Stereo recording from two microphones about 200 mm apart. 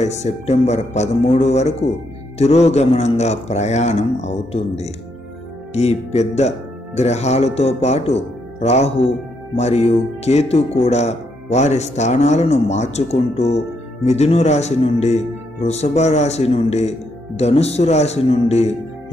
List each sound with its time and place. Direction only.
0.0 s speech: 35° left (ahead or behind)